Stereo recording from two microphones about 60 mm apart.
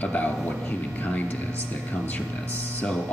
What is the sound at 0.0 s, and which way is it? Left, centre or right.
Speech, left.